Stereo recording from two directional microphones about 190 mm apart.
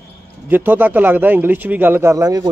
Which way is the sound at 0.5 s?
10° right (ahead or behind).